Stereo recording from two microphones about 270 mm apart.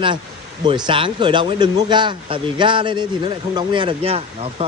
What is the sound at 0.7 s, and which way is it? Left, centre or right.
Speech, centre.